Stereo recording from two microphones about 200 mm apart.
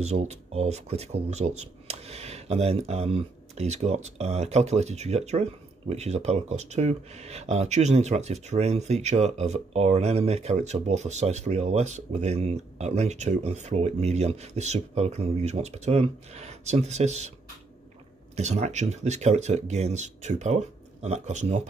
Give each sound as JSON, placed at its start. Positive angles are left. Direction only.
{"t": 0.0, "sound": "speech", "side_deg": -35}
{"t": 18.3, "sound": "speech", "side_deg": -35}